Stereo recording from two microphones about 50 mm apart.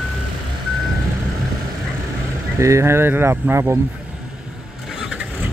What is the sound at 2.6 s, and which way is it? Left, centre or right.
Speech, right.